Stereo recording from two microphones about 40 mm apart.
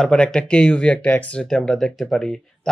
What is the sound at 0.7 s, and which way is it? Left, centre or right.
Speech, left.